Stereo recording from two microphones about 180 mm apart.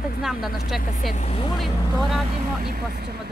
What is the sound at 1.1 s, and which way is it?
Speech, 40° left (ahead or behind).